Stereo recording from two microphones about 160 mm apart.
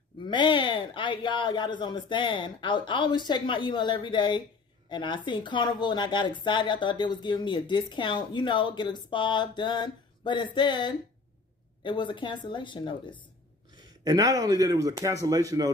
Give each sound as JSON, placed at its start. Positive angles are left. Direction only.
{"t": 0.2, "sound": "speech", "side_deg": 30}
{"t": 13.7, "sound": "speech", "side_deg": -25}